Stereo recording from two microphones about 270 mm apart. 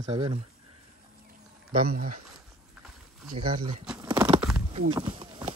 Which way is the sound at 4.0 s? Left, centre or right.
Centre.